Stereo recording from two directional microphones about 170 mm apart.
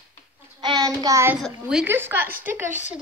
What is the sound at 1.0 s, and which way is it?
Speech, 20° right (ahead or behind).